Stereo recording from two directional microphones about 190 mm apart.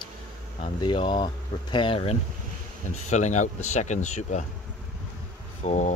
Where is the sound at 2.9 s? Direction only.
40° left (ahead or behind).